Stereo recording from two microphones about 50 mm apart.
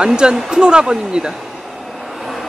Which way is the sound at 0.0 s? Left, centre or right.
Centre.